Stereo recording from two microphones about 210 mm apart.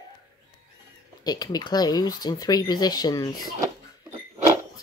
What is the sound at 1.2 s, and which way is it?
Speech, 20° left (ahead or behind).